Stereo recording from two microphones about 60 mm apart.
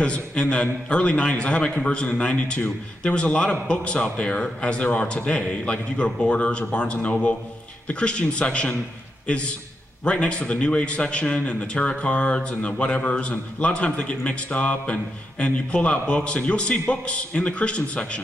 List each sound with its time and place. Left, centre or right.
0.0 s a man's voice: centre